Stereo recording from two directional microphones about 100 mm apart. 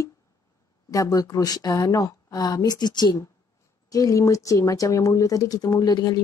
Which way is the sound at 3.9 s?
35° left (ahead or behind).